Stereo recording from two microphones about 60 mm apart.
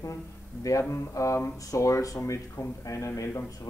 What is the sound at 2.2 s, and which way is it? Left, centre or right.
Speech, left.